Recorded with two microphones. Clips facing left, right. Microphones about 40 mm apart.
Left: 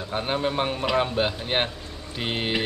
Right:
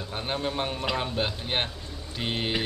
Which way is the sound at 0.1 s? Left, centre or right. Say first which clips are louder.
Left 5 dB; centre.